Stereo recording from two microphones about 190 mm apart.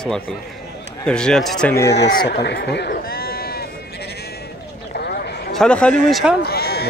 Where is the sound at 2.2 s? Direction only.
60° left (ahead or behind).